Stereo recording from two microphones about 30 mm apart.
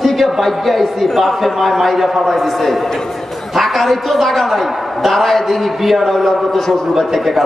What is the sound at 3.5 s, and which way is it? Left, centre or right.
A man's voice, centre.